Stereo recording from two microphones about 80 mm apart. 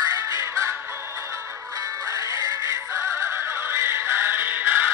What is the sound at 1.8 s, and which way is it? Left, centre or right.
Synthetic singing, right.